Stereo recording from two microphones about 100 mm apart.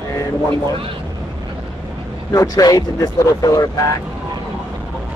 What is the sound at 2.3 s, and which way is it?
Speech, 35° left (ahead or behind).